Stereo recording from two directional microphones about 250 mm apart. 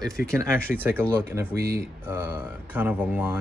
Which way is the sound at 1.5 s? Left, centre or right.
Right.